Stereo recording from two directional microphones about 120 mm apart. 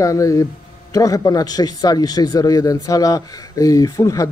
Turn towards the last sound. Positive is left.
turn(degrees=25)  # may be behind; listen again after turning